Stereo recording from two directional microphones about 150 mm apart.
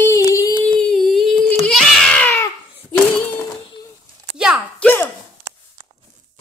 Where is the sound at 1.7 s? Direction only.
5° left (ahead or behind).